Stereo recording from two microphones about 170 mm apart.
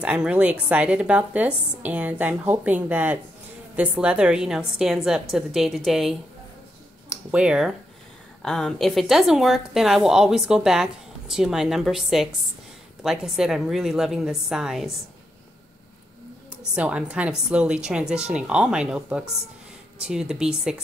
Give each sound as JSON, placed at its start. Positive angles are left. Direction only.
{"t": 0.0, "sound": "speech", "side_deg": -5}
{"t": 16.7, "sound": "speech", "side_deg": -5}